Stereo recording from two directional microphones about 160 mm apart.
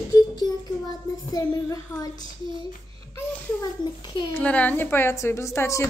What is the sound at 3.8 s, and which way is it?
Speech, 30° left (ahead or behind).